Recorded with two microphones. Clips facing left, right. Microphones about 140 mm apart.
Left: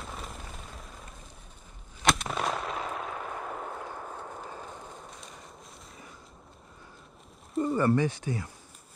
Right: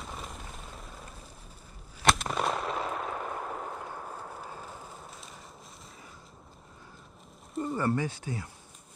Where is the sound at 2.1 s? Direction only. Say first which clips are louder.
Right 1 dB; centre (ahead or behind).